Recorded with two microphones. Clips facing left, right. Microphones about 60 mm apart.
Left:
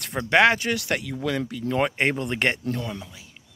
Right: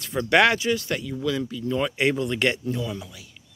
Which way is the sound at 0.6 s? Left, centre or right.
Left.